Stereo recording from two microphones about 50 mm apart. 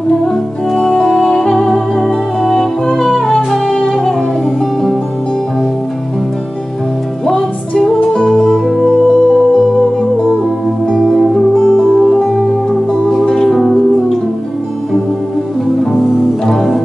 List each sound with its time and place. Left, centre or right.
0.3 s music: centre
1.2 s music: centre
7.2 s music: centre
8.0 s music: centre
10.9 s music: centre